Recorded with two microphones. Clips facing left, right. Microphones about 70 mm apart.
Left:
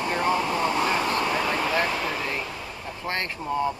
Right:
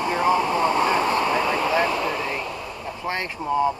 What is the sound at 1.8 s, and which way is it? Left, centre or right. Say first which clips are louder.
Vehicle: right 4 dB; right.